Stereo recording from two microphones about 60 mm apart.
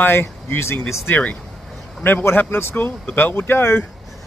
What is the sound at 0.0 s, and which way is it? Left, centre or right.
Speech, left.